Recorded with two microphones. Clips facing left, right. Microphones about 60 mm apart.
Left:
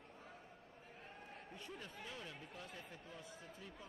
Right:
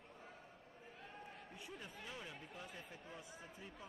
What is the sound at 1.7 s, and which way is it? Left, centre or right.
A man's voice, centre.